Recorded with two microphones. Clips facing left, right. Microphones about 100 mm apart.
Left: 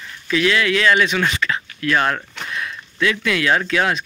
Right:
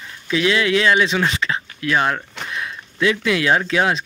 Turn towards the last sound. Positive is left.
turn(degrees=-25)  # may be behind; listen again after turning